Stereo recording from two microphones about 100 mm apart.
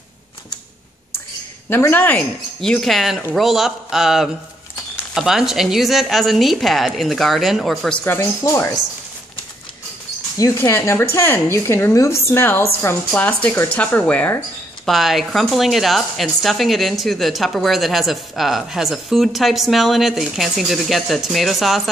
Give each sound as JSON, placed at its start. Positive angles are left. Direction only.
{"t": 1.7, "sound": "a woman's voice", "side_deg": 20}
{"t": 2.6, "sound": "a woman's voice", "side_deg": 5}
{"t": 8.2, "sound": "speech", "side_deg": 30}
{"t": 10.3, "sound": "a woman's voice", "side_deg": 35}
{"t": 14.9, "sound": "a woman's voice", "side_deg": 0}